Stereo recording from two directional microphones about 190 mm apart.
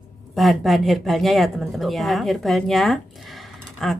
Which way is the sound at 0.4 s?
Centre (ahead or behind).